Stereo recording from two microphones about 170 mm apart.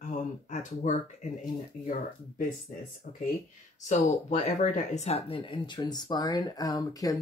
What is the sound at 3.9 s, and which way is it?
Speech, 45° left (ahead or behind).